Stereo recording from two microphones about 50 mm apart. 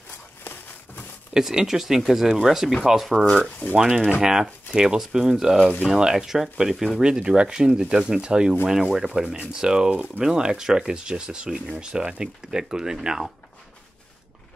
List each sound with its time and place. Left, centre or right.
0.4 s a sound: left
1.3 s speech: centre
3.4 s speech: left
3.7 s speech: centre
7.0 s speech: centre
10.2 s speech: centre